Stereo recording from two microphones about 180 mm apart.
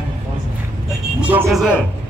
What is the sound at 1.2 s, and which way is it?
Speech, 10° right (ahead or behind).